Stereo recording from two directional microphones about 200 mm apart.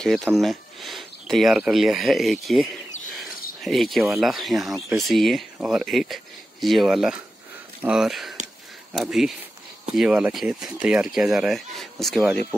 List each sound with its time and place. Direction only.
0.0 s speech: centre (ahead or behind)